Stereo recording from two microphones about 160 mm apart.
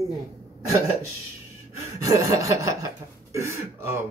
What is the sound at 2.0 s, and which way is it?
A man's voice, 20° right (ahead or behind).